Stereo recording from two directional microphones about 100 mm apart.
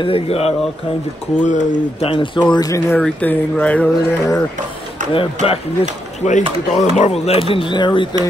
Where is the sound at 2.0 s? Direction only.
70° left (ahead or behind).